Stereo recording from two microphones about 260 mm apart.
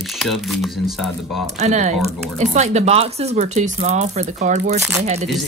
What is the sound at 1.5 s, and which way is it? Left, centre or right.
Speech, right.